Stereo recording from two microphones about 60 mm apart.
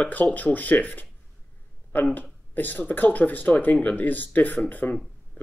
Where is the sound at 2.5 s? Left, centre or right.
Left.